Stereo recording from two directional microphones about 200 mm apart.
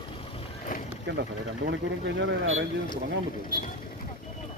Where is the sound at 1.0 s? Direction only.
60° right (ahead or behind).